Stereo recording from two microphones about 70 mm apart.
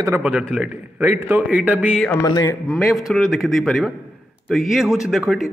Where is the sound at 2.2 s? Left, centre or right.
Left.